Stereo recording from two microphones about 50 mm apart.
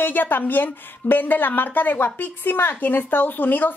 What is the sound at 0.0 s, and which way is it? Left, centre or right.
A woman's voice, left.